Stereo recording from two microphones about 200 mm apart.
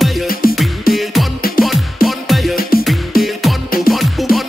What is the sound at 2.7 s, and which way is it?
Music, 45° left (ahead or behind).